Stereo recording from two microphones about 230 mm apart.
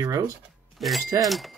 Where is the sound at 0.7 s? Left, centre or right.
Centre.